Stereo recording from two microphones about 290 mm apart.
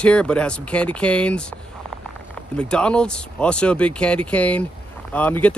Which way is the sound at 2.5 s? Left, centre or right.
Centre.